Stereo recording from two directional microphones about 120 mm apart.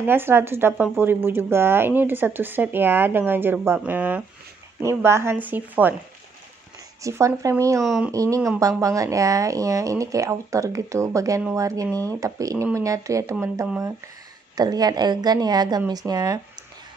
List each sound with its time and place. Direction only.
0.0 s speech: 20° right (ahead or behind)
7.0 s a woman's voice: 25° right (ahead or behind)